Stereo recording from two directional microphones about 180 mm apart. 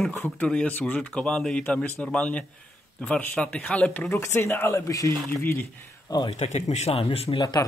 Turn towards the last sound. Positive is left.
turn(degrees=25)  # may be behind; listen again after turning